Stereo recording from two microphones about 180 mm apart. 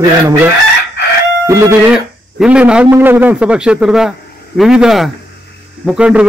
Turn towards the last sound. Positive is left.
turn(degrees=-5)  # may be behind; listen again after turning